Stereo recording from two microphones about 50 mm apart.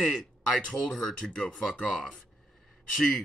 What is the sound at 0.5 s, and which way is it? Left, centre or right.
Speech, centre.